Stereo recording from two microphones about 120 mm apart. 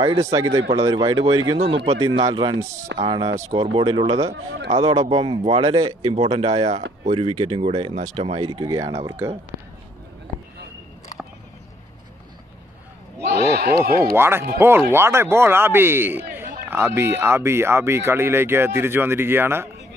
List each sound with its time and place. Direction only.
0.0 s speech: 30° right (ahead or behind)
1.6 s speech: 55° right (ahead or behind)
2.3 s speech: 40° right (ahead or behind)
5.6 s speech: 35° right (ahead or behind)
6.1 s speech: 60° right (ahead or behind)
7.6 s speech: 60° right (ahead or behind)
8.4 s speech: 40° right (ahead or behind)
13.2 s a sound: 60° left (ahead or behind)
14.1 s speech: 20° right (ahead or behind)